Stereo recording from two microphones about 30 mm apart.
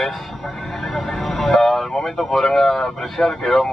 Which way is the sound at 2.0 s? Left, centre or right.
Centre.